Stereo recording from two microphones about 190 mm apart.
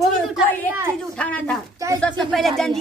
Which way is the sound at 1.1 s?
5° left (ahead or behind).